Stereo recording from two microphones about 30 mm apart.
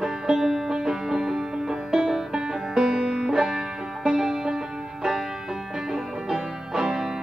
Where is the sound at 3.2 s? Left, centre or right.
Centre.